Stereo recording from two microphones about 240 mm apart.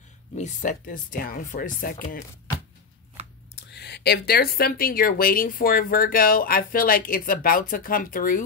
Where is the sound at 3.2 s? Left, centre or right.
Right.